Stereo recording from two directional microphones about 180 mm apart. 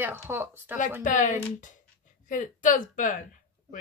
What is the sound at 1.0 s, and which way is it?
A woman's voice, 45° left (ahead or behind).